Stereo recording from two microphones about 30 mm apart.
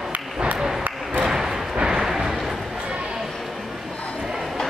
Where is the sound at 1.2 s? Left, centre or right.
Centre.